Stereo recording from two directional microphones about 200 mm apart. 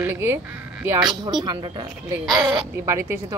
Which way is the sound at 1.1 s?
20° right (ahead or behind).